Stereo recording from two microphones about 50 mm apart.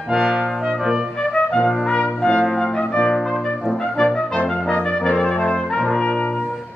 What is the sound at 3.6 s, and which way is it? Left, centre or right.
Brass instrument, centre.